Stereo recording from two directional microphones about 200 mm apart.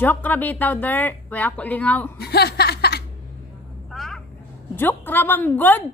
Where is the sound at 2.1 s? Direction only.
55° left (ahead or behind).